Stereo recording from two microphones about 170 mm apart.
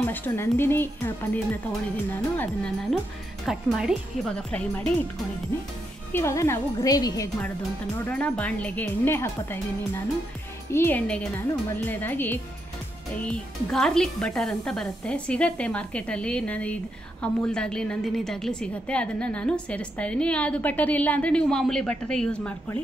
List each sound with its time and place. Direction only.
0.0 s a woman's voice: 10° left (ahead or behind)
3.4 s speech: centre (ahead or behind)
6.1 s a woman's voice: 15° left (ahead or behind)
8.1 s a woman's voice: 10° left (ahead or behind)
10.7 s a woman's voice: 10° left (ahead or behind)